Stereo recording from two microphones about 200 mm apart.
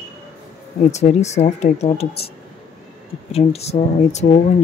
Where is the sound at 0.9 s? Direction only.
35° left (ahead or behind).